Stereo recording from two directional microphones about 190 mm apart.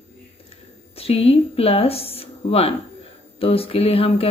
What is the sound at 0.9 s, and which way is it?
A woman's voice, 30° left (ahead or behind).